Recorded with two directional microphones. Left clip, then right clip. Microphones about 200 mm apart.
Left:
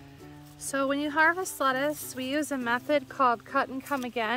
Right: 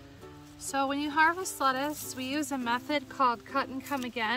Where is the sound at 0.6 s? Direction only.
15° left (ahead or behind).